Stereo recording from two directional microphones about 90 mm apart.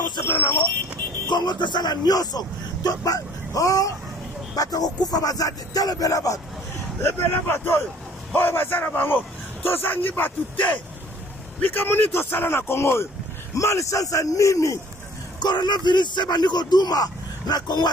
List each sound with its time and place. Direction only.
1.3 s speech: 55° left (ahead or behind); by 6.4 s 40° left (ahead or behind)
7.0 s a man's voice: 25° left (ahead or behind)
11.6 s a man's voice: 25° left (ahead or behind)
15.4 s speech: 55° left (ahead or behind)